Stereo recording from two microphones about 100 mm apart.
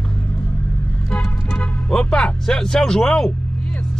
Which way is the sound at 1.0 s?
5° left (ahead or behind).